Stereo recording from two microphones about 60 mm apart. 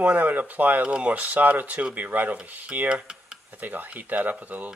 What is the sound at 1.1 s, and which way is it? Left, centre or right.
Speech, right.